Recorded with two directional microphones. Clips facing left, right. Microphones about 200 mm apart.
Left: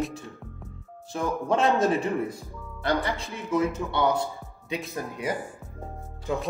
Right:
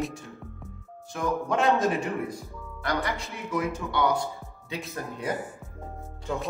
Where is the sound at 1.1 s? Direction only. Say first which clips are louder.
Left 1 dB; 25° left (ahead or behind).